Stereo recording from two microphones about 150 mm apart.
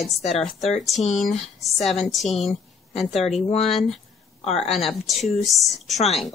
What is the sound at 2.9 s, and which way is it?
Speech, 45° left (ahead or behind).